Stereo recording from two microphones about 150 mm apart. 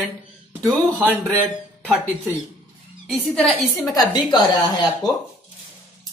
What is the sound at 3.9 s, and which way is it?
Speech, 25° left (ahead or behind).